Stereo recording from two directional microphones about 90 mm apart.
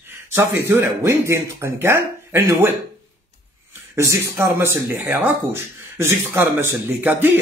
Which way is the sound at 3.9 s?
35° right (ahead or behind).